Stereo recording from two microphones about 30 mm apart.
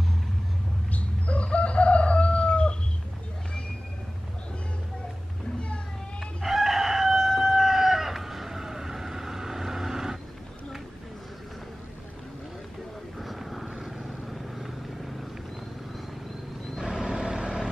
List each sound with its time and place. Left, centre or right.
0.9 s chicken: left
6.4 s chicken: centre
13.2 s vehicle: centre
16.8 s vehicle: right